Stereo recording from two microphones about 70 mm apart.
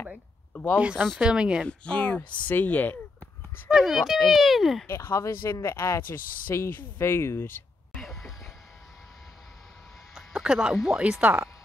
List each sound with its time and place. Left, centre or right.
0.7 s speech: centre
1.7 s speech: centre
3.7 s speech: centre
4.8 s speech: left
7.9 s a sound: centre
10.3 s speech: centre